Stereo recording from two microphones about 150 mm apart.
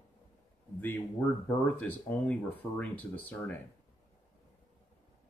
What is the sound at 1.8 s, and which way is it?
Speech, 10° left (ahead or behind).